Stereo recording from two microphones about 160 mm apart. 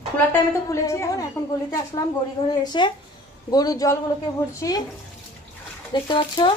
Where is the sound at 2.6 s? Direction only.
30° left (ahead or behind).